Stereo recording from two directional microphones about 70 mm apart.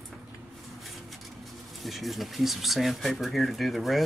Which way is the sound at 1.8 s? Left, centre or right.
Centre.